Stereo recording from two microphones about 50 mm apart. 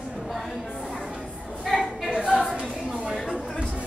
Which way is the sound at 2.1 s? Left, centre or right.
Centre.